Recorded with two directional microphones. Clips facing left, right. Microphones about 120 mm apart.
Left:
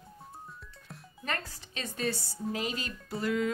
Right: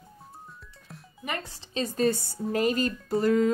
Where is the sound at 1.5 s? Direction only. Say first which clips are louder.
Right 10 dB; 30° right (ahead or behind).